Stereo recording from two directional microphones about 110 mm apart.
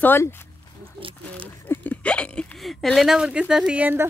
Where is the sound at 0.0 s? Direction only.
20° left (ahead or behind).